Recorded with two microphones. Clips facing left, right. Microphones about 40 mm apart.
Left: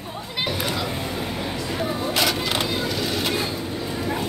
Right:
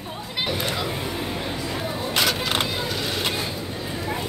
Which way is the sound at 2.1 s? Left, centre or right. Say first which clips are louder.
Right 1 dB; centre.